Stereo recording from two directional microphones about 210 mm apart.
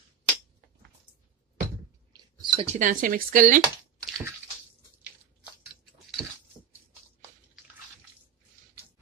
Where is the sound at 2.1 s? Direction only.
30° right (ahead or behind).